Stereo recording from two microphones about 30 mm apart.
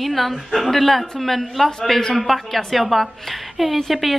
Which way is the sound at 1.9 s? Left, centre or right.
Centre.